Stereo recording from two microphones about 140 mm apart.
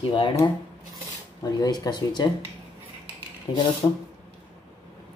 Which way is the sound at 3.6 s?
35° left (ahead or behind).